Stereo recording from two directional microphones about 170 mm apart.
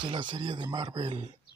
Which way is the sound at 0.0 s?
25° right (ahead or behind).